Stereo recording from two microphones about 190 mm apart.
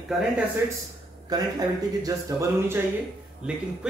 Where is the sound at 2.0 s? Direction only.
15° right (ahead or behind).